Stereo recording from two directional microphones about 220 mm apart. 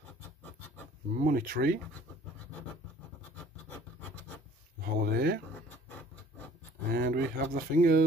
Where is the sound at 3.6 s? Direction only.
10° left (ahead or behind).